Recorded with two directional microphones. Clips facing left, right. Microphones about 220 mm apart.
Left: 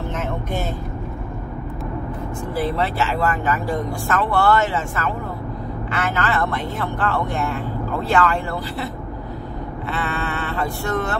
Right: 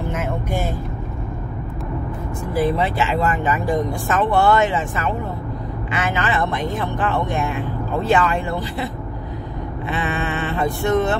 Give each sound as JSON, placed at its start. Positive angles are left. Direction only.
{"t": 0.1, "sound": "music", "side_deg": -10}
{"t": 2.5, "sound": "speech", "side_deg": -15}
{"t": 9.8, "sound": "vehicle", "side_deg": -15}